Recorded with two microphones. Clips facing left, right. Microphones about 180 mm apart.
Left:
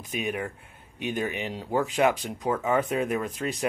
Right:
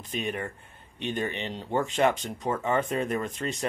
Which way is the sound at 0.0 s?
5° left (ahead or behind).